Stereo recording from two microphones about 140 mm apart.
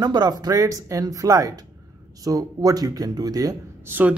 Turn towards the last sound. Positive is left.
turn(degrees=-25)  # may be behind; listen again after turning